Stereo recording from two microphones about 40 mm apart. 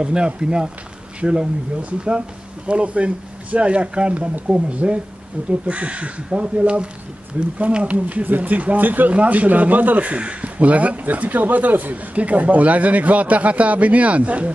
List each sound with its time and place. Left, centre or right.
0.0 s a man's voice: right
9.1 s a man's voice: right